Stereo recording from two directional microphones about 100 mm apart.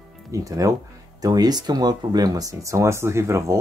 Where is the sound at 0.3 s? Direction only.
35° right (ahead or behind).